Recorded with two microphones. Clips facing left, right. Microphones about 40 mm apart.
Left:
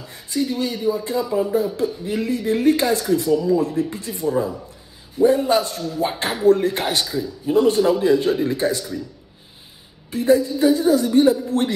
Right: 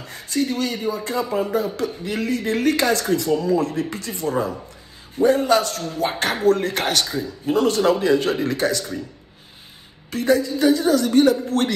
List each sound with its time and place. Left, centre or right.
0.0 s a man's voice: right
10.1 s a man's voice: right